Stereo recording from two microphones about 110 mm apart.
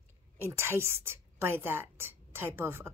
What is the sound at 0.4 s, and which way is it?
A woman's voice, 25° right (ahead or behind).